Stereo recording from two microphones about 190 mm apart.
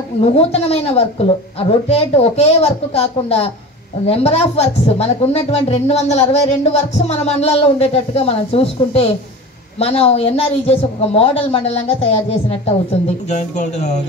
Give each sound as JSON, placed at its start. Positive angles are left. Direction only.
{"t": 0.2, "sound": "a woman's voice", "side_deg": 30}